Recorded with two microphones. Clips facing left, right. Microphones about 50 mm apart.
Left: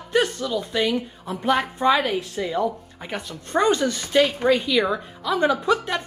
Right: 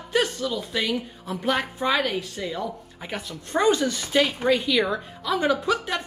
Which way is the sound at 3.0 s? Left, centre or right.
Centre.